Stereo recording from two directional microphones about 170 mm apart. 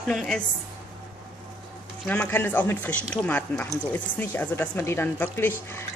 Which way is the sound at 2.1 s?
10° left (ahead or behind).